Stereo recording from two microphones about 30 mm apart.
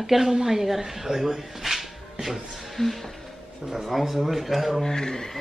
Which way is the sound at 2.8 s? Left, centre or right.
Centre.